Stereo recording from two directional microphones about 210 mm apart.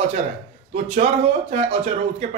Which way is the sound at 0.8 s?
30° right (ahead or behind).